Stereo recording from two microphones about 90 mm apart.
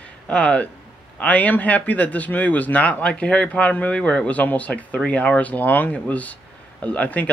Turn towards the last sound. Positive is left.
turn(degrees=15)  # may be behind; listen again after turning